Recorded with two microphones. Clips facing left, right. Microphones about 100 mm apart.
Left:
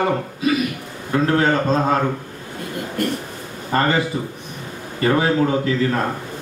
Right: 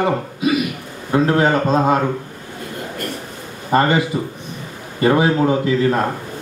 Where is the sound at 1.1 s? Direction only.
20° right (ahead or behind).